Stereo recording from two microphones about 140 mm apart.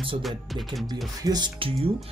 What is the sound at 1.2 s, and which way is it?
Speech, 30° right (ahead or behind).